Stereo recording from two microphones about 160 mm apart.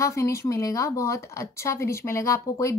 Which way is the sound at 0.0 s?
20° left (ahead or behind).